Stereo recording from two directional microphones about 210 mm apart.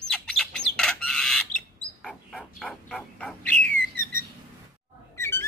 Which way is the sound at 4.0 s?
40° right (ahead or behind).